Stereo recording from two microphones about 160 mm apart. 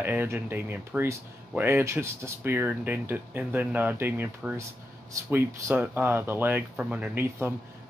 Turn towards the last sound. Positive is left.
turn(degrees=-15)  # may be behind; listen again after turning